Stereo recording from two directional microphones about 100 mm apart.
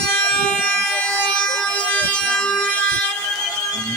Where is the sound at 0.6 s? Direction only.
10° left (ahead or behind).